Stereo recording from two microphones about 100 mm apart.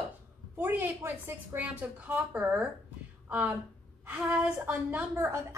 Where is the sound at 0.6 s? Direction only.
20° right (ahead or behind).